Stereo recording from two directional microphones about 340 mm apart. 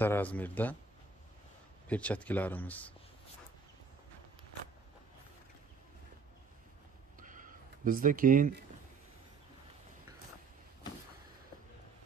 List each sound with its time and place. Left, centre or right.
0.0 s speech: centre
1.9 s speech: centre
7.2 s a sound: right
8.0 s speech: right